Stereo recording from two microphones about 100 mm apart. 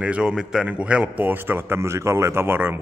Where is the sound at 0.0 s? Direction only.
10° right (ahead or behind).